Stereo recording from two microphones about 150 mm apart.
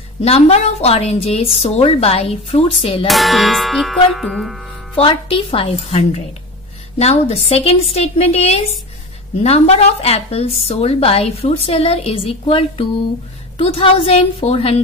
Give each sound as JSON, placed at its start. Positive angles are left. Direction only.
{"t": 0.2, "sound": "a woman's voice", "side_deg": 45}
{"t": 3.1, "sound": "speech", "side_deg": 0}
{"t": 4.9, "sound": "a woman's voice", "side_deg": 40}